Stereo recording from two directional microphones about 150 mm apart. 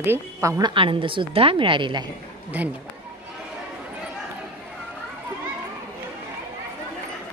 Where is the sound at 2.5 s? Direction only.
10° right (ahead or behind).